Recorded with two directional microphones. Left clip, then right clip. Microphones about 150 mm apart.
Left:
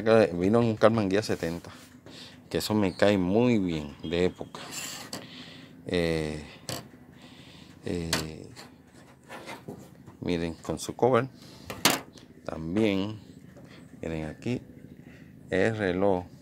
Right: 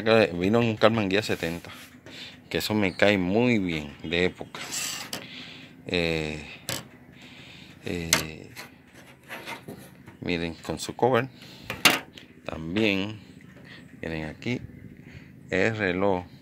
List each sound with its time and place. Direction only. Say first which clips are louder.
0.0 s speech: right 1 dB; 10° left (ahead or behind)
5.2 s a sound: right 4 dB; 15° left (ahead or behind)
7.8 s speech: right 4 dB; 15° left (ahead or behind)
10.2 s speech: right 1 dB; 15° left (ahead or behind)
12.4 s speech: right 2 dB; 10° left (ahead or behind)